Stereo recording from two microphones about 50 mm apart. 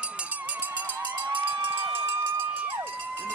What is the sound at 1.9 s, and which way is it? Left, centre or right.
Run, right.